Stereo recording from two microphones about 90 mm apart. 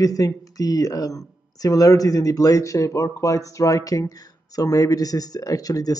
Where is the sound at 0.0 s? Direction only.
40° left (ahead or behind).